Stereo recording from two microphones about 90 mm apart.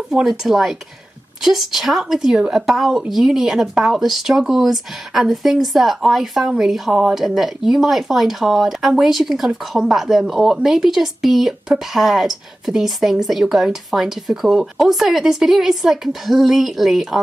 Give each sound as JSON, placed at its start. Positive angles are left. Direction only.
{"t": 0.1, "sound": "a woman's voice", "side_deg": -5}